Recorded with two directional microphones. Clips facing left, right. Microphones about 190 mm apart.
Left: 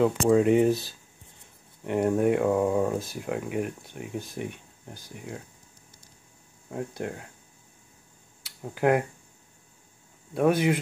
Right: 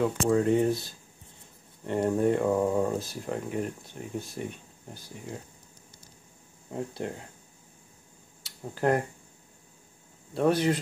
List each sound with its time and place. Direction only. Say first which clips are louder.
0.0 s speech: left 4 dB; 15° left (ahead or behind)
1.9 s speech: left 2 dB; 10° left (ahead or behind)
6.9 s speech: left 1 dB; 10° left (ahead or behind)
8.6 s speech: left 3 dB; 10° left (ahead or behind)
10.3 s speech: left 2 dB; 10° left (ahead or behind)